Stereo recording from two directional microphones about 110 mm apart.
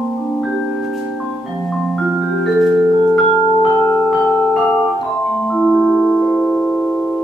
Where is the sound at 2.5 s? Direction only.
10° right (ahead or behind).